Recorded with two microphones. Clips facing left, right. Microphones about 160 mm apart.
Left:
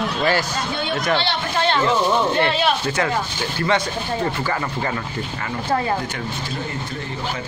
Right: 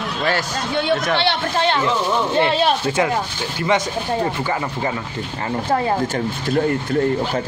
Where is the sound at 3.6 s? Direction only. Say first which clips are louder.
Right 2 dB; 15° right (ahead or behind).